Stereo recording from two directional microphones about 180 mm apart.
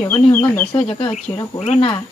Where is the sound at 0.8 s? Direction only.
30° left (ahead or behind).